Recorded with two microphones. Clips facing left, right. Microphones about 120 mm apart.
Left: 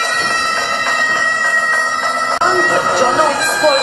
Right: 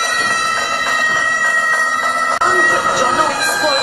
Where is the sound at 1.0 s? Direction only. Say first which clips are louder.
Left 1 dB; 5° right (ahead or behind).